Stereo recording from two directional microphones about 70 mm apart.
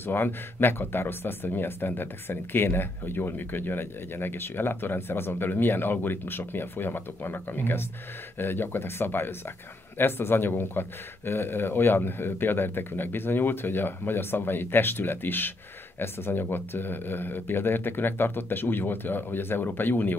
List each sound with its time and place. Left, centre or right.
0.0 s speech: left